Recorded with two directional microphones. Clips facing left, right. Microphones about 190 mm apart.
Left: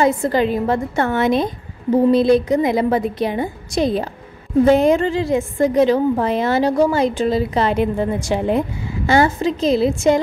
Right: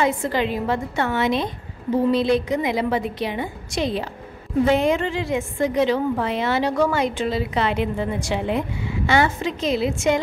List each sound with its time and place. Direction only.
0.0 s a woman's voice: 40° left (ahead or behind)